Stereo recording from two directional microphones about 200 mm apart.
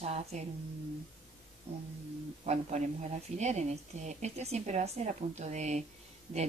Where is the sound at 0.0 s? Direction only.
35° right (ahead or behind).